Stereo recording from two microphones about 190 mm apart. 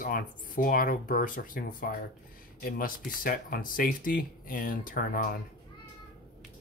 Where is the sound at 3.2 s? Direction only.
50° left (ahead or behind).